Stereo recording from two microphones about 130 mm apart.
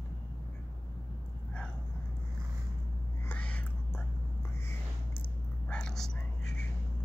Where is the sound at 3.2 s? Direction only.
10° left (ahead or behind).